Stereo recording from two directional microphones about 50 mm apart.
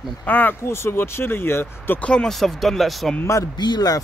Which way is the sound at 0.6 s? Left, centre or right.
Left.